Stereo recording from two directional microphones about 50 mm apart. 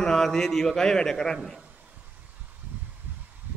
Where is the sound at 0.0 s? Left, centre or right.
Centre.